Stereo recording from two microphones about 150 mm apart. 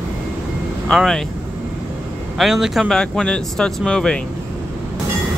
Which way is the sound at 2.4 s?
Centre (ahead or behind).